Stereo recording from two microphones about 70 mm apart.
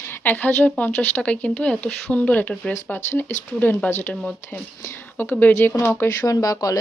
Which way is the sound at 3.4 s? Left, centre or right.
Left.